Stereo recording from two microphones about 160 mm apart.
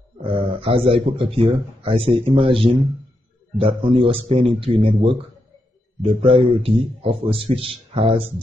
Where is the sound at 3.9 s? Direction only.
35° right (ahead or behind).